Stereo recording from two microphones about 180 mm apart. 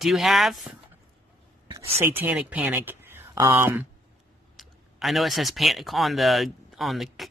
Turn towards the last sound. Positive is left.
turn(degrees=0)  # may be behind; listen again after turning